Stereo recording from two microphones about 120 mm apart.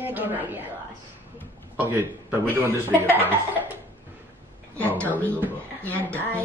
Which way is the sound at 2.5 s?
15° right (ahead or behind).